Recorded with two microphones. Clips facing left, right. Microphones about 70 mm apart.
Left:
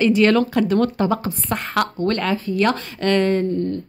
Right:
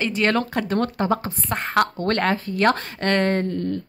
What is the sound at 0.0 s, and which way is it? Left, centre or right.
A woman's voice, right.